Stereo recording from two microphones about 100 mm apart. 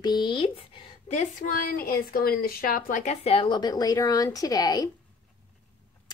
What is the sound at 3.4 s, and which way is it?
A woman's voice, 45° left (ahead or behind).